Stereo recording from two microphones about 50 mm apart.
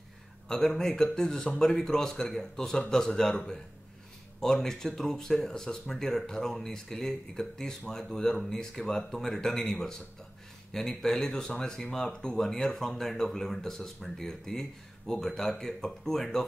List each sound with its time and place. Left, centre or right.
0.5 s speech: centre